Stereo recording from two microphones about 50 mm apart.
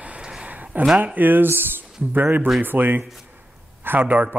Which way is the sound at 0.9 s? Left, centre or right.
Right.